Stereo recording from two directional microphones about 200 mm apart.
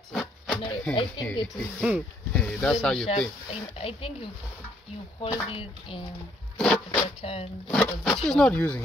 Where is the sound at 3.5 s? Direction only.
30° left (ahead or behind).